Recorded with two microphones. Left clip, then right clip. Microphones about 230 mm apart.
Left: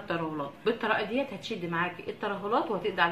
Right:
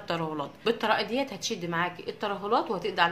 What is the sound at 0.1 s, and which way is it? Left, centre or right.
A woman's voice, right.